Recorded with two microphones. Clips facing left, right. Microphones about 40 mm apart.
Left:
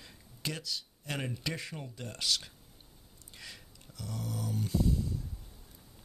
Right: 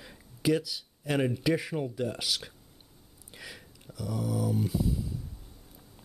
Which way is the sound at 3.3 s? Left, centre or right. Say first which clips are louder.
Right 4 dB; centre.